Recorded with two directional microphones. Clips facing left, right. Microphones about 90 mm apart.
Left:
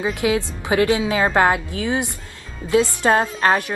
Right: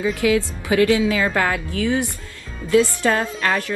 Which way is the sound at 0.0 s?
25° left (ahead or behind).